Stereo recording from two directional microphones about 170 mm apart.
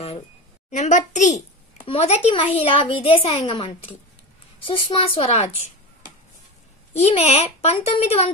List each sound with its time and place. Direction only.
0.7 s a child's voice: 45° left (ahead or behind)
7.0 s a woman's voice: 40° left (ahead or behind)